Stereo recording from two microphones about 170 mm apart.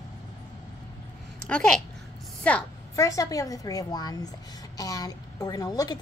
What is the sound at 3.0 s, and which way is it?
A woman's voice, 20° left (ahead or behind).